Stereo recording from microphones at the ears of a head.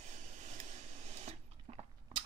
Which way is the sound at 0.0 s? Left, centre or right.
Right.